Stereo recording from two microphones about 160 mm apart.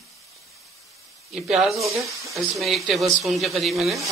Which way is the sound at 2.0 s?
20° right (ahead or behind).